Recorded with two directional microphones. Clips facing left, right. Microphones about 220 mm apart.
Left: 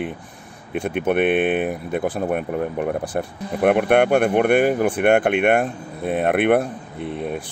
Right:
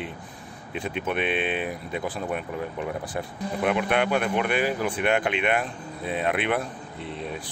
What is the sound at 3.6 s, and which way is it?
Speech, 55° left (ahead or behind).